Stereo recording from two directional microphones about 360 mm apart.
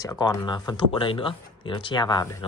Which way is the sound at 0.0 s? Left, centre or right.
Centre.